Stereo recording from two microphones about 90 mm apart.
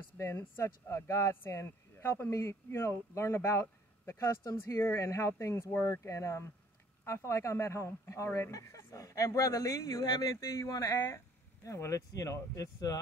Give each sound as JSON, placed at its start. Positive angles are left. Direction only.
{"t": 0.2, "sound": "speech", "side_deg": 30}